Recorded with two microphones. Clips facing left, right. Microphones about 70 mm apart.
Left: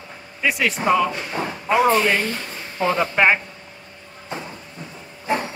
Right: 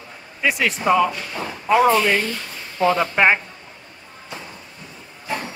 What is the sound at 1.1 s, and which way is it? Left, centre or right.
Speech, left.